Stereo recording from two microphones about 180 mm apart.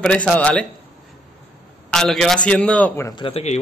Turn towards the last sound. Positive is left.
turn(degrees=30)  # may be behind; listen again after turning